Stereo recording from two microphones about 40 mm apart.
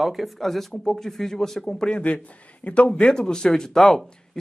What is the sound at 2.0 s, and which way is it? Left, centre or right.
A man's voice, left.